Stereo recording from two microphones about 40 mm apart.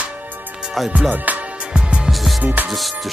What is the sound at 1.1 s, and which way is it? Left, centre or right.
Music, right.